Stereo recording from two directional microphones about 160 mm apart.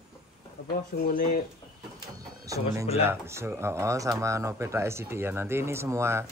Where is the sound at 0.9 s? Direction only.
65° left (ahead or behind).